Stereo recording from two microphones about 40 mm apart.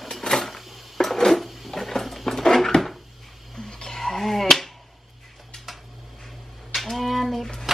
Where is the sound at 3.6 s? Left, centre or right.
Centre.